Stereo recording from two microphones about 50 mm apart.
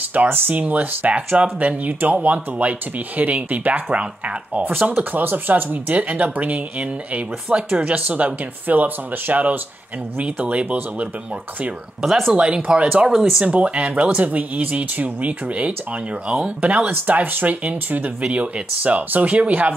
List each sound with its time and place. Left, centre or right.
0.1 s speech: right
4.8 s speech: right
12.3 s speech: centre
13.0 s speech: centre
13.4 s speech: right